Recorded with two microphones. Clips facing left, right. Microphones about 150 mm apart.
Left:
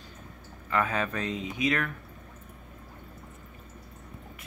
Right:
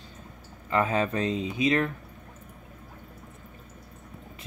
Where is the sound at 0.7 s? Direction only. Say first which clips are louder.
Right 3 dB; 30° right (ahead or behind).